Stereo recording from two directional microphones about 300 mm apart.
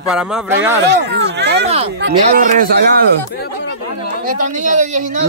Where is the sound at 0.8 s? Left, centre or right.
Right.